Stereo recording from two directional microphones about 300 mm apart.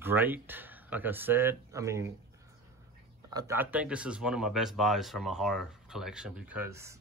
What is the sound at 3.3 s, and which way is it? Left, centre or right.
Speech, centre.